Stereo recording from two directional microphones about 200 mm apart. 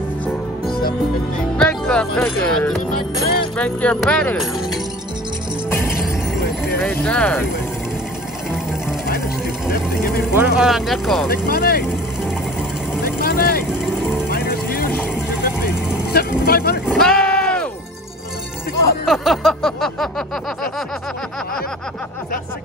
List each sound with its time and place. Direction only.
1.6 s speech: 5° left (ahead or behind)
3.5 s a sound: 5° left (ahead or behind)
6.8 s speech: 10° left (ahead or behind)
9.7 s speech: 50° left (ahead or behind)
10.6 s a sound: centre (ahead or behind)
11.2 s speech: 50° left (ahead or behind)
13.0 s vehicle: 50° left (ahead or behind)
14.3 s music: 50° left (ahead or behind)
16.1 s speech: 50° left (ahead or behind)
16.8 s sheep: centre (ahead or behind)
19.0 s a sound: centre (ahead or behind)